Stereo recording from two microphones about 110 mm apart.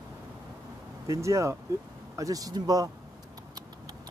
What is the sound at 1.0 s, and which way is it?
Speech, 30° right (ahead or behind).